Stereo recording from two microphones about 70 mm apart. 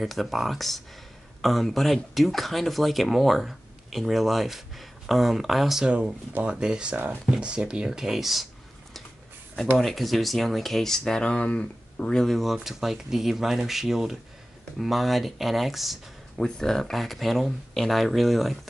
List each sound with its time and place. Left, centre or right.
0.0 s speech: centre
5.9 s speech: centre
9.8 s speech: centre
16.3 s speech: centre